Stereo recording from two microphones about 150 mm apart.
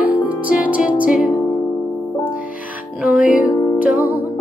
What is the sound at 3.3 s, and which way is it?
Music, 60° left (ahead or behind).